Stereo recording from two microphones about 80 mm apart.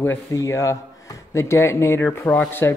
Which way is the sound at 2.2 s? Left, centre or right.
Centre.